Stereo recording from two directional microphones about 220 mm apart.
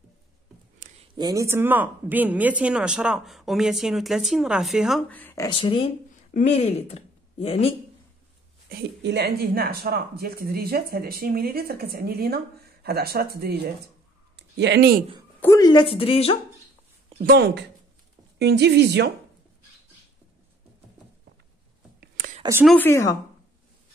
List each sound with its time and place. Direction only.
0.8 s a sound: 35° right (ahead or behind)
1.1 s speech: 15° right (ahead or behind); by 5.5 s 10° left (ahead or behind)
5.5 s speech: 25° left (ahead or behind)
8.6 s speech: 50° right (ahead or behind)
15.4 s speech: 15° left (ahead or behind)
17.1 s speech: 40° right (ahead or behind)
22.0 s whispering: 40° right (ahead or behind)
22.4 s a sound: 10° right (ahead or behind)
22.7 s a woman's voice: 10° left (ahead or behind)